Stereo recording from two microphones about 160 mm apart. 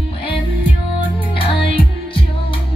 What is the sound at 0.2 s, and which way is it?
Music, 35° left (ahead or behind).